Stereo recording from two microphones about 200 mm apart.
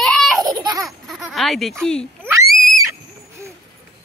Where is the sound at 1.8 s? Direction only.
5° left (ahead or behind).